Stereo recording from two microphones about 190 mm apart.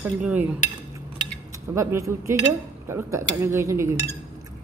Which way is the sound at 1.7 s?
15° right (ahead or behind).